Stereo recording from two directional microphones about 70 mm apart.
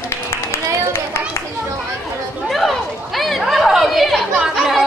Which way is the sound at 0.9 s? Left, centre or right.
Left.